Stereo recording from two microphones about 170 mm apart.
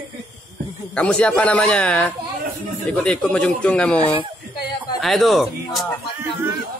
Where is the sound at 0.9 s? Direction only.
5° left (ahead or behind).